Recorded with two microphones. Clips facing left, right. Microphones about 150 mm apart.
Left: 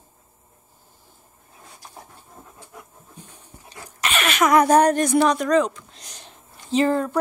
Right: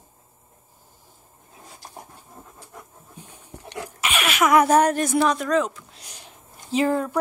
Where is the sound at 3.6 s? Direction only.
75° right (ahead or behind).